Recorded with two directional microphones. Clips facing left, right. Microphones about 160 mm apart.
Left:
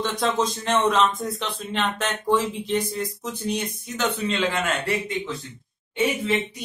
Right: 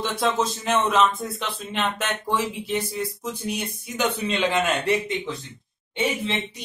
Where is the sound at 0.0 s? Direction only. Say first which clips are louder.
Even; 5° right (ahead or behind); by 5.3 s 20° right (ahead or behind).